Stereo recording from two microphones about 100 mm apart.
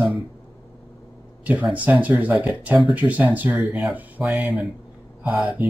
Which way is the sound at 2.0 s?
15° right (ahead or behind).